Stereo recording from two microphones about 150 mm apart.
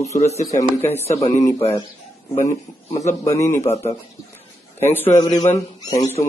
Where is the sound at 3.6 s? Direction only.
45° left (ahead or behind).